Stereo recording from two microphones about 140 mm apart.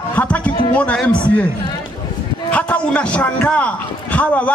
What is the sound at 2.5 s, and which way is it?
A man's voice, 10° left (ahead or behind).